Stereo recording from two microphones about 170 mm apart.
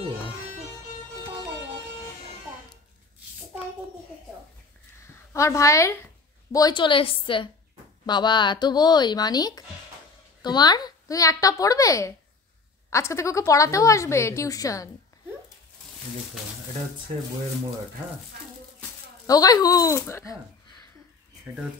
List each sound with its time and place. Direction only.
5.0 s a sound: 15° left (ahead or behind)
6.5 s a woman's voice: 25° left (ahead or behind)
19.2 s a woman's voice: 20° left (ahead or behind)